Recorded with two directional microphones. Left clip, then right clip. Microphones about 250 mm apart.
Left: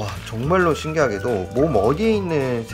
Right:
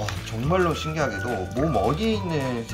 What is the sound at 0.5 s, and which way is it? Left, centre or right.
Speech, left.